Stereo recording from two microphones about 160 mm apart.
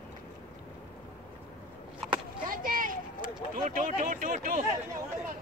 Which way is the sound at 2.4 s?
60° right (ahead or behind).